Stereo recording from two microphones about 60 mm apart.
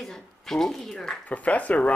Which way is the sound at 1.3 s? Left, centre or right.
Left.